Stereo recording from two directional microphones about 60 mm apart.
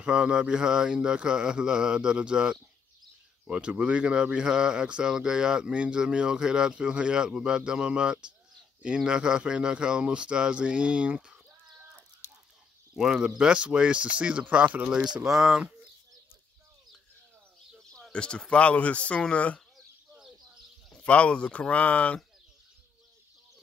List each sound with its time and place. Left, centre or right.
0.0 s speech: centre
12.2 s a sound: left
12.9 s speech: centre; by 14.9 s right
14.9 s speech: centre
17.7 s bird: centre
18.1 s speech: centre
20.2 s bird: centre
21.0 s speech: left